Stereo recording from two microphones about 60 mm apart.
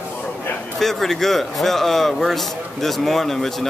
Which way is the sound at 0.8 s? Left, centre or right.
Centre.